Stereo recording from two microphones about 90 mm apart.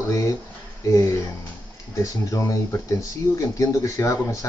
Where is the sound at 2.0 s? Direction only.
35° left (ahead or behind).